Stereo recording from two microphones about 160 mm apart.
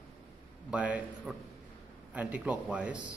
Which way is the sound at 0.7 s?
10° right (ahead or behind).